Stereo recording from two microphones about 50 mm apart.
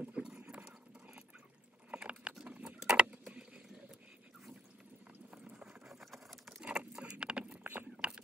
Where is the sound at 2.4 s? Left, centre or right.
Right.